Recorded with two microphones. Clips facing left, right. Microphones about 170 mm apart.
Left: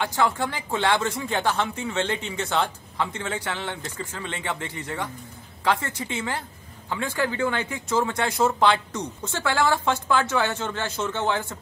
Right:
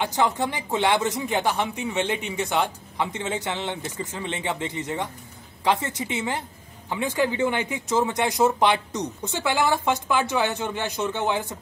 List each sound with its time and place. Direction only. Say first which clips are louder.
0.0 s a woman's voice: right 1 dB; 20° right (ahead or behind)